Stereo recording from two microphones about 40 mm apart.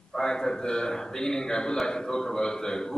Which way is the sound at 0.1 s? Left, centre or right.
Centre.